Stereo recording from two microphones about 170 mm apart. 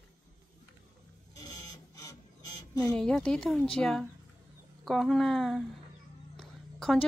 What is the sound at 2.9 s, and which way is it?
A woman's voice, 5° left (ahead or behind).